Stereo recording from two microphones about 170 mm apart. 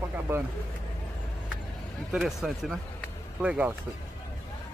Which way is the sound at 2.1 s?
Centre (ahead or behind).